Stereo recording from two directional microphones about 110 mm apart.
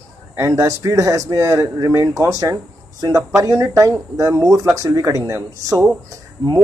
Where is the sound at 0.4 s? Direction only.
25° right (ahead or behind).